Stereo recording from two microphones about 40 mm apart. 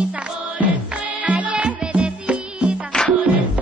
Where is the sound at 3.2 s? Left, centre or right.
Right.